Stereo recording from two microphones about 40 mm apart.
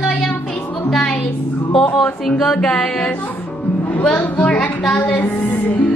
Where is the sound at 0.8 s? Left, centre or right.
Centre.